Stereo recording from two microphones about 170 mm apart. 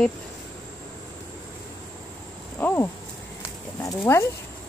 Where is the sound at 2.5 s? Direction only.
10° left (ahead or behind).